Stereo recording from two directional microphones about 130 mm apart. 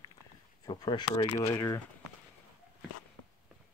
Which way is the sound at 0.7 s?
35° left (ahead or behind).